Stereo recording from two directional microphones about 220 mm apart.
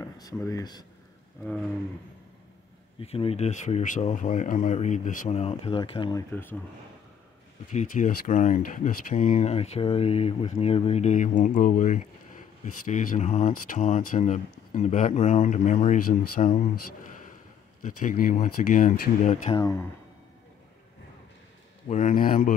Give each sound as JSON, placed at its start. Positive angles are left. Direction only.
{"t": 0.0, "sound": "speech", "side_deg": 15}
{"t": 3.0, "sound": "speech", "side_deg": 25}
{"t": 7.7, "sound": "speech", "side_deg": 35}
{"t": 17.8, "sound": "speech", "side_deg": 35}
{"t": 21.8, "sound": "speech", "side_deg": 35}